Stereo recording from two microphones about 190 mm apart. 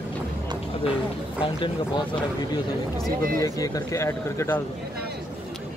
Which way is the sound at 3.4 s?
20° left (ahead or behind).